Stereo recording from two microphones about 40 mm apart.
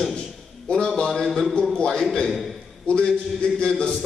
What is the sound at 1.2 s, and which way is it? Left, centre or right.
Speech, centre.